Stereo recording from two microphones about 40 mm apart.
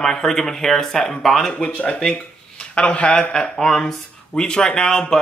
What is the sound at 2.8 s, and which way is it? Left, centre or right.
Speech, left.